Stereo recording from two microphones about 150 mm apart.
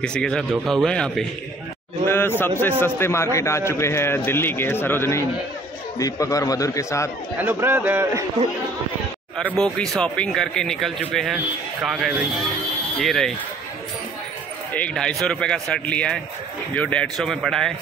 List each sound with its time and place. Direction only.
0.0 s a man's voice: 5° left (ahead or behind)
7.3 s speech: 15° right (ahead or behind)
9.6 s speech: 5° left (ahead or behind)
14.7 s speech: 10° left (ahead or behind)